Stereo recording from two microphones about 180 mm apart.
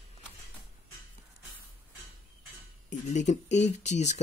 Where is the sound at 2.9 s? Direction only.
40° left (ahead or behind).